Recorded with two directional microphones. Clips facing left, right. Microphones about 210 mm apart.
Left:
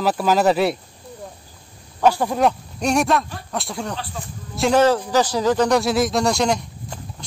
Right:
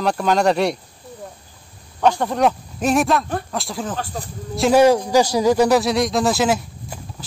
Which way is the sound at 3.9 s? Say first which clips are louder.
Right 3 dB; 40° right (ahead or behind).